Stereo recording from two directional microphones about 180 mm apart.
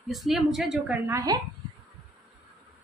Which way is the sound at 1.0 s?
15° right (ahead or behind).